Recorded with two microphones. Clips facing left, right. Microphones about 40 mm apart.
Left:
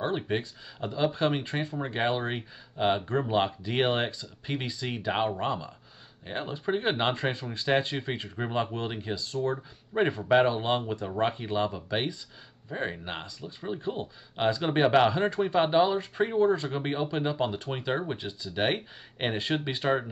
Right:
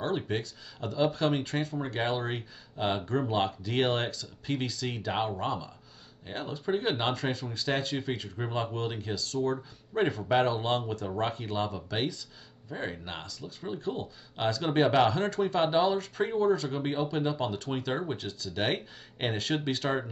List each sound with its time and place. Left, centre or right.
0.0 s speech: left